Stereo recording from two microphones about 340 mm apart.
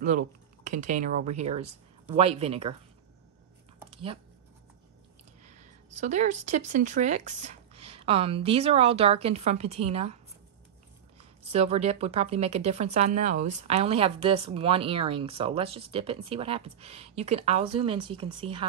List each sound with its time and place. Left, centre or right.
0.0 s speech: right
3.9 s a sound: centre
5.9 s speech: right
11.5 s speech: centre